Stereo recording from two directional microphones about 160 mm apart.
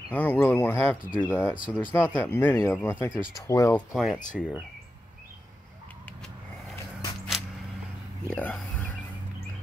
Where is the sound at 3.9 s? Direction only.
Centre (ahead or behind).